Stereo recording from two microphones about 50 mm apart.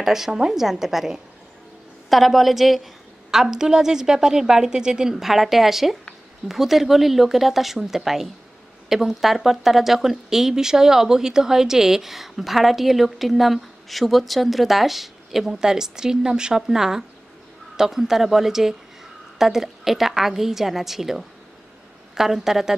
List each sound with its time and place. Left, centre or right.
0.0 s a woman's voice: centre